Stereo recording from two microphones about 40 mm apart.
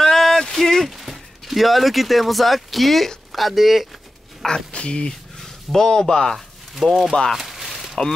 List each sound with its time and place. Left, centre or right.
0.0 s a sound: centre
0.9 s speech: centre
4.4 s speech: centre
4.7 s speech: left
5.4 s speech: centre
6.7 s speech: centre
7.3 s a sound: centre